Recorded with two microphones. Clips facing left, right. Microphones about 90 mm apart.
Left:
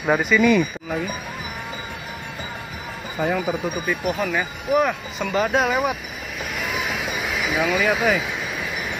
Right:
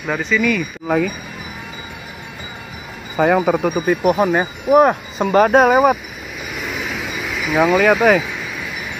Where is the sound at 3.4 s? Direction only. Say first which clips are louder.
Right 8 dB; 60° right (ahead or behind); by 6.0 s 45° right (ahead or behind).